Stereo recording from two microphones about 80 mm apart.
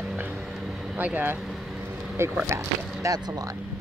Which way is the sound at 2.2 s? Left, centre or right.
Right.